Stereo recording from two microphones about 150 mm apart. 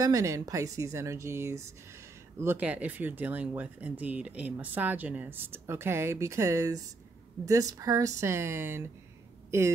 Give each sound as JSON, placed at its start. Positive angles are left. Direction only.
{"t": 0.0, "sound": "speech", "side_deg": -20}